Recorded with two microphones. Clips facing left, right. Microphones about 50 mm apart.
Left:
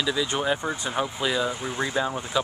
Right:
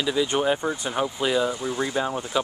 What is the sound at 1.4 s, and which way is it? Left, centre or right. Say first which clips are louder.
Speech: right 2 dB; left.